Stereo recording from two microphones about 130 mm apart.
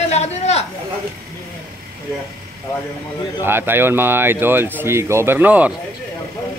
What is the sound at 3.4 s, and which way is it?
Speech, 15° right (ahead or behind).